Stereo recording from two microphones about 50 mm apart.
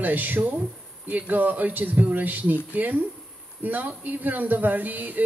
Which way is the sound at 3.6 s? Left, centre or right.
Right.